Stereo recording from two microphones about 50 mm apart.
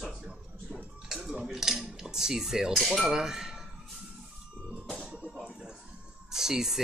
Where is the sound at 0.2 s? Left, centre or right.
Right.